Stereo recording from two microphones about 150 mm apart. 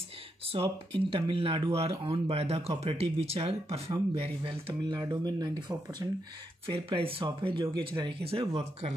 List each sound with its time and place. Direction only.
0.5 s speech: 40° right (ahead or behind)
6.7 s speech: 40° right (ahead or behind)